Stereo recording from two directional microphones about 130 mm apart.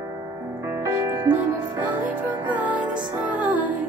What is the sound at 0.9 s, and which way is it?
Music, 20° right (ahead or behind).